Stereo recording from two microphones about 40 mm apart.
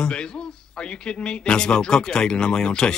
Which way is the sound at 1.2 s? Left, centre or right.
Left.